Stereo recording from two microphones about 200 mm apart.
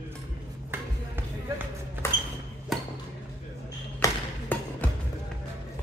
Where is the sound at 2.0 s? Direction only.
15° left (ahead or behind).